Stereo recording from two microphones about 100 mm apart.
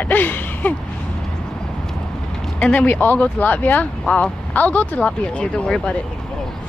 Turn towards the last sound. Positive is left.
turn(degrees=10)  # may be behind; listen again after turning